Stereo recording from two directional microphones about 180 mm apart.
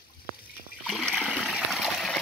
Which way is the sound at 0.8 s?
Centre (ahead or behind).